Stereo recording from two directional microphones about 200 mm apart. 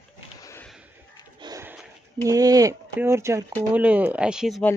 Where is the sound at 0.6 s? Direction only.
5° right (ahead or behind).